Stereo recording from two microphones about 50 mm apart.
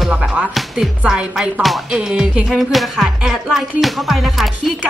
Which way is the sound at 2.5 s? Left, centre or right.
Centre.